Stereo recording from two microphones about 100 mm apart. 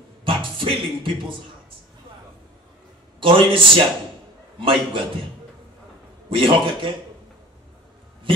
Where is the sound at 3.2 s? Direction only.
60° right (ahead or behind).